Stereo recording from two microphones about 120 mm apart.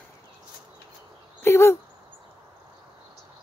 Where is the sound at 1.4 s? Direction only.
20° left (ahead or behind).